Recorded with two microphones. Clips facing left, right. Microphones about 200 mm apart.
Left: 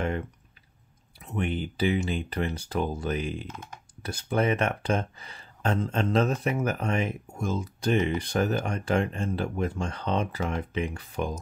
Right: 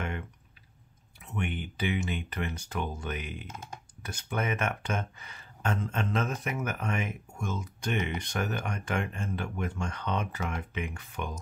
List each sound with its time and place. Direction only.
1.2 s speech: 35° left (ahead or behind)